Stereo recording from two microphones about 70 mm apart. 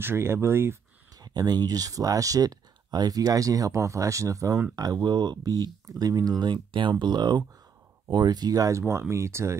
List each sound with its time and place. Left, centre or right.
0.0 s speech: right
1.1 s speech: right
5.0 s speech: right